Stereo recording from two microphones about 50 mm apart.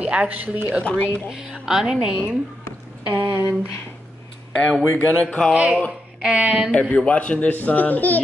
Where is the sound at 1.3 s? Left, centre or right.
Centre.